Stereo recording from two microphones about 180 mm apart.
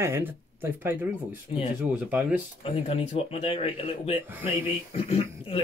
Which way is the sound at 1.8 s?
10° right (ahead or behind).